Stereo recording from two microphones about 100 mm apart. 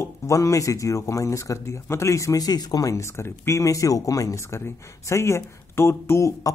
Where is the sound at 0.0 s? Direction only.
30° left (ahead or behind).